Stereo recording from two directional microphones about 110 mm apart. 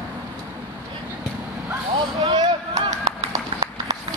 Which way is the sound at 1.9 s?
45° right (ahead or behind).